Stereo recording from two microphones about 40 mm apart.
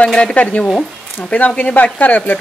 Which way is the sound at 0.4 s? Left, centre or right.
Left.